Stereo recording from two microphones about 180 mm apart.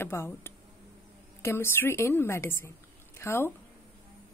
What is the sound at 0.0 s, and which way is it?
A woman's voice, 15° left (ahead or behind).